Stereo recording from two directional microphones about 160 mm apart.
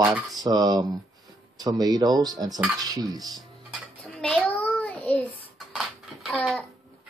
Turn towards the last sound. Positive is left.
turn(degrees=5)  # may be behind; listen again after turning